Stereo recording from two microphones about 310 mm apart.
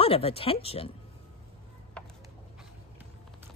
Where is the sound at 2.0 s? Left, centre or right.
Centre.